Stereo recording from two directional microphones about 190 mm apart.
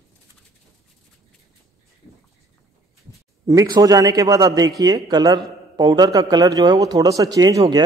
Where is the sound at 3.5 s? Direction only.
20° right (ahead or behind).